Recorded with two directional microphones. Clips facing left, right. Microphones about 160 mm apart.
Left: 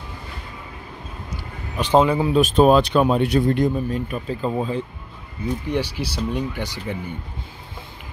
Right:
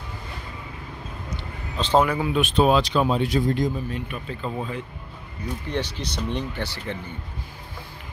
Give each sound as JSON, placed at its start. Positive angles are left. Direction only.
{"t": 1.8, "sound": "a man's voice", "side_deg": 15}
{"t": 2.4, "sound": "speech", "side_deg": 45}
{"t": 3.9, "sound": "speech", "side_deg": 40}
{"t": 5.7, "sound": "speech", "side_deg": 10}